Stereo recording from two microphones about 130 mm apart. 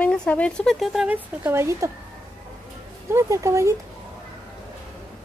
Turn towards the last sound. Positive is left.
turn(degrees=-25)  # may be behind; listen again after turning